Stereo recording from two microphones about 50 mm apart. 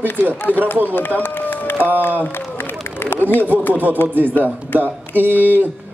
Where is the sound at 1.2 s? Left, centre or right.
Left.